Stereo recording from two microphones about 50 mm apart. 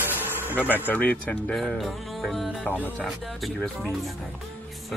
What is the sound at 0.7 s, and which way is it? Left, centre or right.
Speech, left.